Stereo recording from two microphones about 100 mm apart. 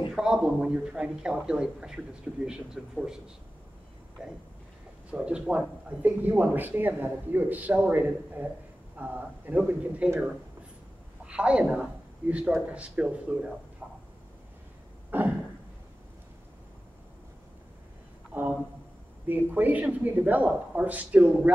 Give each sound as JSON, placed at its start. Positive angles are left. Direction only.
{"t": 0.1, "sound": "speech", "side_deg": -5}
{"t": 5.1, "sound": "speech", "side_deg": -10}
{"t": 11.2, "sound": "a woman's voice", "side_deg": -10}
{"t": 15.0, "sound": "a sound", "side_deg": -20}
{"t": 18.3, "sound": "speech", "side_deg": -20}